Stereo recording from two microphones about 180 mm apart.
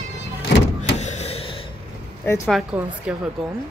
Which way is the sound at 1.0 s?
40° left (ahead or behind).